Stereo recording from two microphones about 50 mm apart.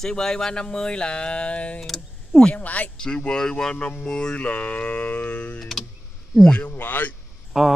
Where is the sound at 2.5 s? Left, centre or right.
Left.